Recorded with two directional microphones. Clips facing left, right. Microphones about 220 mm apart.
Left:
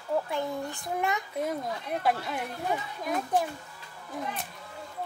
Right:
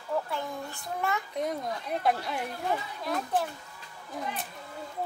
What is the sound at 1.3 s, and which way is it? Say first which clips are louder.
Speech: even; 5° left (ahead or behind).